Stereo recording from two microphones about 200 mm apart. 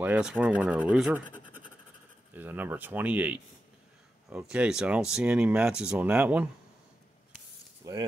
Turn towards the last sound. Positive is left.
turn(degrees=-15)  # may be behind; listen again after turning